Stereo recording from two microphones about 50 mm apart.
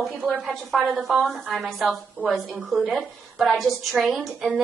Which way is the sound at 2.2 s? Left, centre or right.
Left.